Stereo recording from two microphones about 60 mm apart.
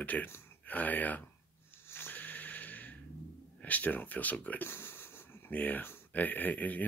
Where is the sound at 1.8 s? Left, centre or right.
Left.